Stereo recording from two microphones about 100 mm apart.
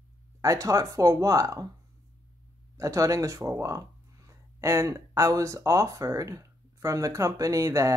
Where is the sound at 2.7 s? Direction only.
30° right (ahead or behind).